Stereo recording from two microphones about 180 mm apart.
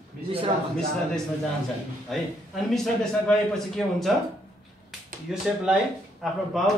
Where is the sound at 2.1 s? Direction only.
Centre (ahead or behind).